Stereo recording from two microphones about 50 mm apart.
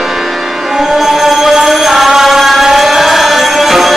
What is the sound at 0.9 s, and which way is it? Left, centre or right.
Music, centre.